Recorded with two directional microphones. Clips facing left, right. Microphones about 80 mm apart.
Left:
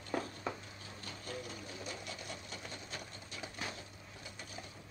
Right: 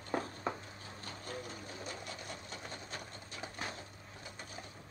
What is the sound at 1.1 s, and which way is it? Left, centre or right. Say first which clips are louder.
Sewing machine: even; right.